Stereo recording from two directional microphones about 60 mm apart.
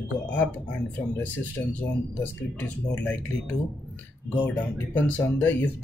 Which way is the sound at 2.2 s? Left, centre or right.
Left.